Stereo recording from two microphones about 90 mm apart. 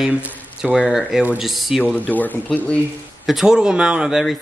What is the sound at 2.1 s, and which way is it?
Speech, 20° left (ahead or behind).